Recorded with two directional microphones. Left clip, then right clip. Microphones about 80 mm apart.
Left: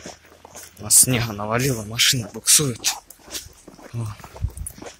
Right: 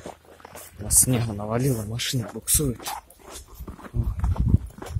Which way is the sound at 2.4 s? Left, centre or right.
Right.